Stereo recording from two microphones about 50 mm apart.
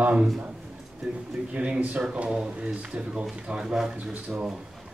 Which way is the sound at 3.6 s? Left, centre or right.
Centre.